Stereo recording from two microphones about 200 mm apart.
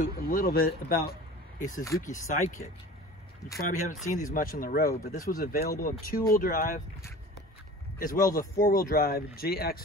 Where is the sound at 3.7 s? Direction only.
40° left (ahead or behind).